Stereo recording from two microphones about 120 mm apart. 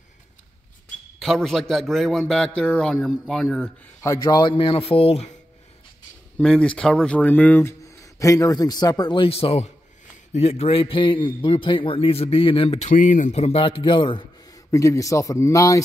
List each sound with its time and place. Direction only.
1.2 s a man's voice: centre (ahead or behind)
4.0 s a man's voice: 25° left (ahead or behind)
4.3 s a man's voice: 40° left (ahead or behind)
6.3 s speech: 10° left (ahead or behind)
8.0 s a man's voice: 25° left (ahead or behind); by 12.7 s 45° left (ahead or behind)
12.7 s a man's voice: 80° left; by 14.6 s 40° left (ahead or behind)
14.7 s a man's voice: 25° left (ahead or behind)